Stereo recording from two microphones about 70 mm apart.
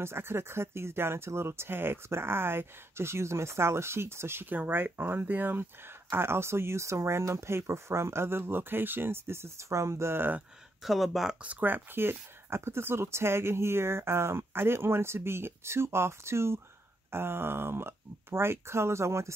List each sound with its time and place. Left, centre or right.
0.0 s speech: right
10.8 s speech: centre
11.4 s speech: right